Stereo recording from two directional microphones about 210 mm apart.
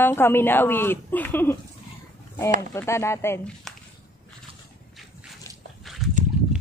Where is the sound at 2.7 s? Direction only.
15° left (ahead or behind).